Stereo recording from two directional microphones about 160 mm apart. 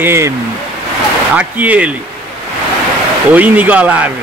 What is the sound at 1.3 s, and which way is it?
Speech, 10° right (ahead or behind).